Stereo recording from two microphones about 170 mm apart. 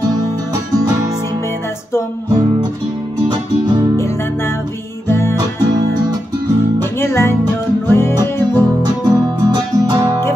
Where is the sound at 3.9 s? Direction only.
15° left (ahead or behind).